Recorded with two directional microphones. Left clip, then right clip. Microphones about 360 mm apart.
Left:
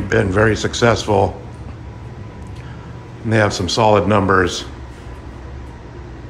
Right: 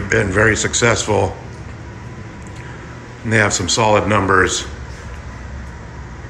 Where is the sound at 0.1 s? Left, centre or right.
Centre.